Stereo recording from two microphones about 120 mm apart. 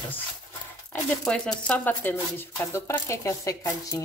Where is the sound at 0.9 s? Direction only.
10° left (ahead or behind).